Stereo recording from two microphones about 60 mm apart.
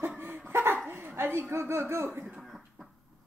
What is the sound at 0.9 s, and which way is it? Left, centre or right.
Speech, right.